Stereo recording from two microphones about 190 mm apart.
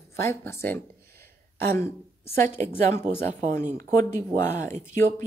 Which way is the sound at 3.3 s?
45° right (ahead or behind).